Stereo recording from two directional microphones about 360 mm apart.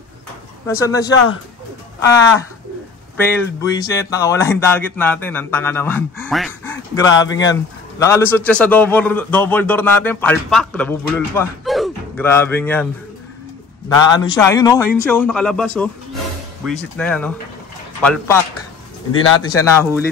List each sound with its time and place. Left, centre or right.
0.7 s a man's voice: centre
13.9 s a man's voice: centre
16.9 s a man's voice: centre
19.4 s speech: centre